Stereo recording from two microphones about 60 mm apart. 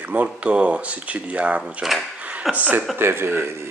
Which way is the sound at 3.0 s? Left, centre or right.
Right.